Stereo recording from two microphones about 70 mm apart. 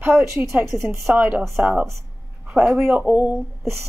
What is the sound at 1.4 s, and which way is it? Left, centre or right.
A woman's voice, centre.